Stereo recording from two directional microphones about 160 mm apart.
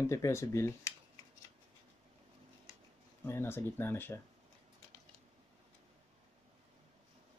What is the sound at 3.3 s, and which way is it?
Speech, 15° left (ahead or behind).